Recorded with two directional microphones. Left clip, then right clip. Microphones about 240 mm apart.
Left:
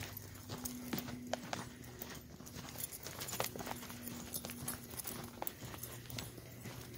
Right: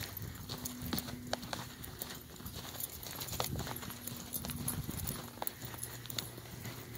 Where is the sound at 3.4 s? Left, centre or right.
Right.